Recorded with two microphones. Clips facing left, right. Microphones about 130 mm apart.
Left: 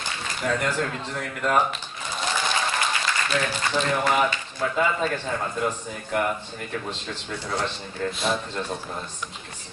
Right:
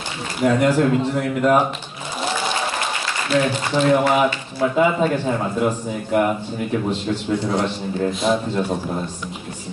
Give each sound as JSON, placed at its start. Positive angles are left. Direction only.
{"t": 0.4, "sound": "speech", "side_deg": -10}
{"t": 3.3, "sound": "speech", "side_deg": -15}
{"t": 7.4, "sound": "speech", "side_deg": -15}
{"t": 8.2, "sound": "a man's voice", "side_deg": 0}